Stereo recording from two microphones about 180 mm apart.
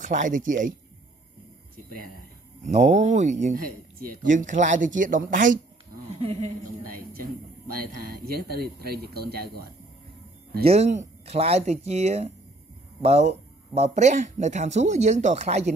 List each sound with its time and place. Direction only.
0.0 s speech: 45° right (ahead or behind)
2.6 s speech: 40° right (ahead or behind)
6.1 s a woman's voice: 35° right (ahead or behind)
6.8 s speech: 55° right (ahead or behind)
10.7 s speech: 40° right (ahead or behind)